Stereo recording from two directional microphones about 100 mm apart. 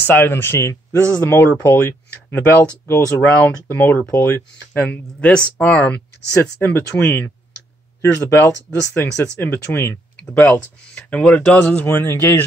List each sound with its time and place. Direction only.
0.0 s speech: 20° left (ahead or behind)
10.3 s speech: 15° left (ahead or behind)